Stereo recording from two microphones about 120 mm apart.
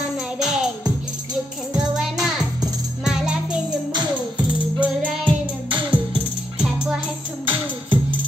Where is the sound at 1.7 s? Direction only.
5° right (ahead or behind).